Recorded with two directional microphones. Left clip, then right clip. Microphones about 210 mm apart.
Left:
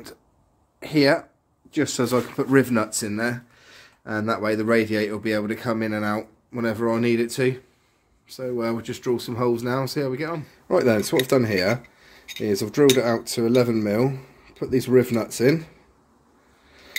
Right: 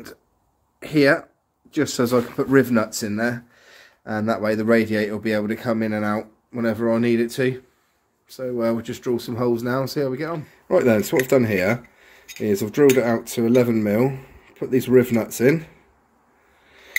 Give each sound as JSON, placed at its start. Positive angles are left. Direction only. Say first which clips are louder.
{"t": 0.7, "sound": "speech", "louder": "right 2 dB", "side_deg": 0}